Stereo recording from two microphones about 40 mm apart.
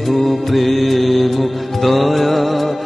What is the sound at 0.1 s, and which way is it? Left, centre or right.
Music, centre.